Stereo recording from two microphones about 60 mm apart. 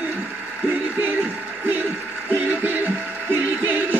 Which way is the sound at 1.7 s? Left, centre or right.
Right.